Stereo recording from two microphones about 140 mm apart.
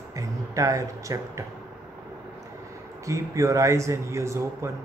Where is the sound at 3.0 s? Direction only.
20° right (ahead or behind).